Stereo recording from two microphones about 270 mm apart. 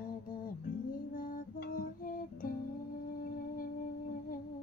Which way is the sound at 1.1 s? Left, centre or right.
Left.